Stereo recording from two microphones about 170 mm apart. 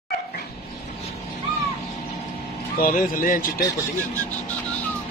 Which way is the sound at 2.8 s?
55° left (ahead or behind).